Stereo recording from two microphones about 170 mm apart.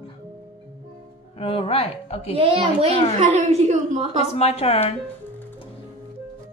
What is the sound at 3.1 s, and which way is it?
Speech, 40° right (ahead or behind).